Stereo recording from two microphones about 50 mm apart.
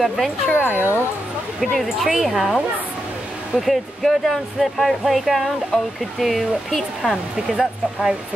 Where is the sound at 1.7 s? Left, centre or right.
Centre.